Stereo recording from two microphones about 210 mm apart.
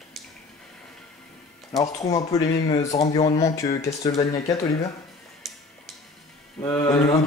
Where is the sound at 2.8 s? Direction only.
30° left (ahead or behind).